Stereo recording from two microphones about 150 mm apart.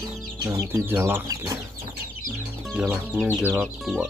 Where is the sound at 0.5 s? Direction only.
15° right (ahead or behind).